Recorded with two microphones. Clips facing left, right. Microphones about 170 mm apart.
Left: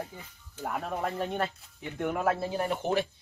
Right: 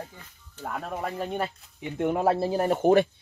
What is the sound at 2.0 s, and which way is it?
Speech, 25° right (ahead or behind).